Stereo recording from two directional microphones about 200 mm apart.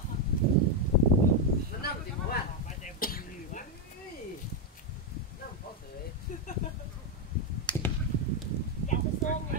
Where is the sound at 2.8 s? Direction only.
45° left (ahead or behind).